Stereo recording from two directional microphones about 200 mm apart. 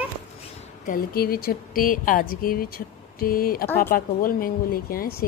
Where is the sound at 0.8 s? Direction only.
45° left (ahead or behind).